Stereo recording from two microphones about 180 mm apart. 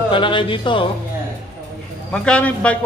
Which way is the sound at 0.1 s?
25° left (ahead or behind).